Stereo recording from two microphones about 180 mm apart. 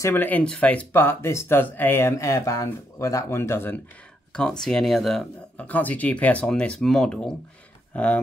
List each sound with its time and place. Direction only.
0.0 s speech: 10° left (ahead or behind)